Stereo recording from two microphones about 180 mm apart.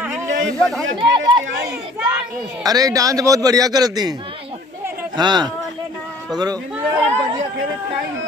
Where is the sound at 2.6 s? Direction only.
20° right (ahead or behind).